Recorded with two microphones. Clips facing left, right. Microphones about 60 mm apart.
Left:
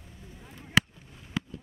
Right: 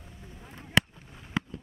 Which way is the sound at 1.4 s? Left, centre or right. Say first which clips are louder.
Right 2 dB; right.